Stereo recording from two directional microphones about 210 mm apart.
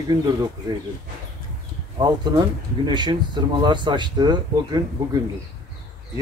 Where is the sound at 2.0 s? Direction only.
20° right (ahead or behind).